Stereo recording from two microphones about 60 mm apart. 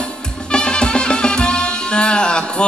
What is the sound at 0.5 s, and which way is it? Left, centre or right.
Music, centre.